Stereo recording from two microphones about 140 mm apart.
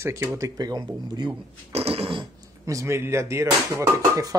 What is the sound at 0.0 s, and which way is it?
Speech, 20° right (ahead or behind).